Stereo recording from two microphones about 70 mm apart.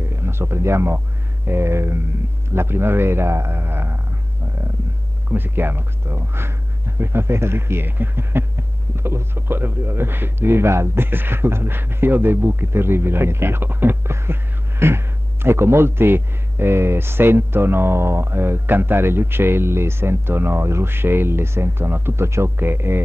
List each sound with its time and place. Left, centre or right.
0.0 s speech: right
5.3 s speech: right